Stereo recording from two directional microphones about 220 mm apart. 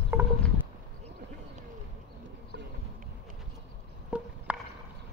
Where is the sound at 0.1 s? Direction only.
10° right (ahead or behind).